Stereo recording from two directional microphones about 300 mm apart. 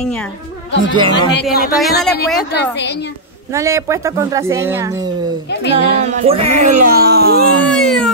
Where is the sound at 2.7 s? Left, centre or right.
Left.